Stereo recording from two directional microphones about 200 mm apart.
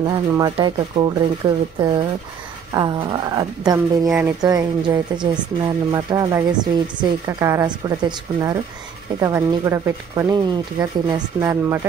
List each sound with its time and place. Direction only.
0.0 s speech: 20° right (ahead or behind)